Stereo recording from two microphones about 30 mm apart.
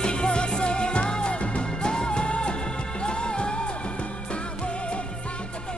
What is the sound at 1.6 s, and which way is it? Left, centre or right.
Music, left.